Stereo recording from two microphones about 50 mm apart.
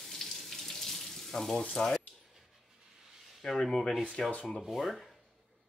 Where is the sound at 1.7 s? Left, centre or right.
Centre.